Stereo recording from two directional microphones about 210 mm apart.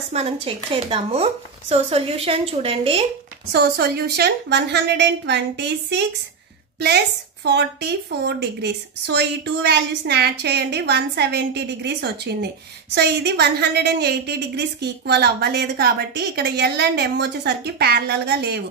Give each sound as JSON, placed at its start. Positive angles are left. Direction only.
{"t": 0.1, "sound": "speech", "side_deg": -30}
{"t": 3.5, "sound": "a woman's voice", "side_deg": -50}
{"t": 7.4, "sound": "a woman's voice", "side_deg": -55}